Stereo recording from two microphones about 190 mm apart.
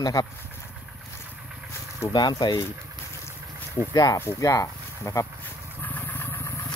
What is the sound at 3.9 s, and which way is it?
Speech, 20° left (ahead or behind).